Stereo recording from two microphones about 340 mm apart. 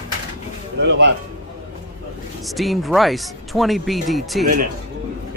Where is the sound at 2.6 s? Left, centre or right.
Centre.